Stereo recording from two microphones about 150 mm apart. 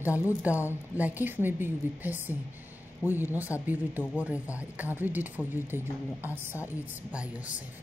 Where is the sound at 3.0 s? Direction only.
20° left (ahead or behind).